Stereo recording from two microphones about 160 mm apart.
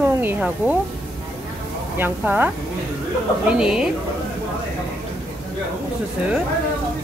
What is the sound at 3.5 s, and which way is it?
Speech, 5° right (ahead or behind).